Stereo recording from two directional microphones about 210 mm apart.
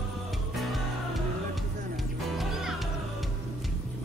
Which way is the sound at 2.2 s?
Centre (ahead or behind).